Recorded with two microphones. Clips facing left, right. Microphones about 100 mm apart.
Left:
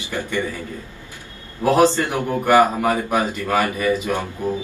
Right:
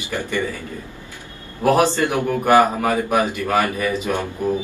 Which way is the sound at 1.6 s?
15° right (ahead or behind).